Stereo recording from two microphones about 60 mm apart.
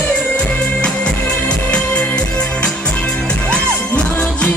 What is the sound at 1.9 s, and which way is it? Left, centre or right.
Music, centre.